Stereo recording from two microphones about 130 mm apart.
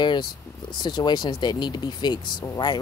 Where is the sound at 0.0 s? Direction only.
35° left (ahead or behind).